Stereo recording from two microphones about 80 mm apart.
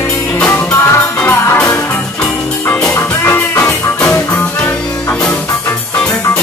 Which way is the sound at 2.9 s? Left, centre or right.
Left.